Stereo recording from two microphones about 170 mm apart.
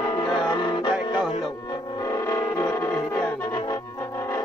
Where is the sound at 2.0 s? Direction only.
20° left (ahead or behind).